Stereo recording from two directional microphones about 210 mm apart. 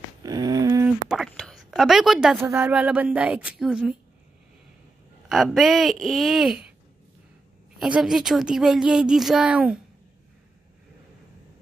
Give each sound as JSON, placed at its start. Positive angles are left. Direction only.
{"t": 0.2, "sound": "a sound", "side_deg": -20}
{"t": 1.0, "sound": "whispering", "side_deg": 0}
{"t": 1.8, "sound": "a woman's voice", "side_deg": 0}
{"t": 5.3, "sound": "a woman's voice", "side_deg": 0}
{"t": 7.8, "sound": "a woman's voice", "side_deg": 0}